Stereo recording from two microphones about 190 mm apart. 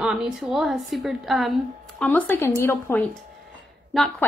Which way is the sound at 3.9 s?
Centre (ahead or behind).